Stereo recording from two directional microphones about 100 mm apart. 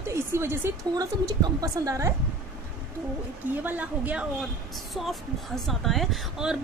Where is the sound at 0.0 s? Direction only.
25° right (ahead or behind).